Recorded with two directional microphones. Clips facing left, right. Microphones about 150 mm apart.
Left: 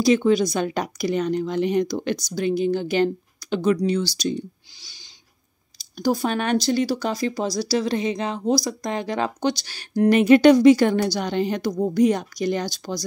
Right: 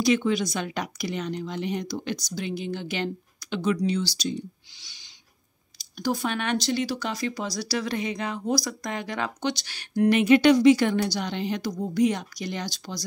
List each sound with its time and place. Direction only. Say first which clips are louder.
0.0 s speech: left 5 dB; 35° left (ahead or behind); by 2.2 s 60° left (ahead or behind)
2.3 s speech: left 12 dB; 45° left (ahead or behind)
4.7 s owl: left 4 dB; 35° left (ahead or behind)
5.8 s speech: left 5 dB; 35° left (ahead or behind)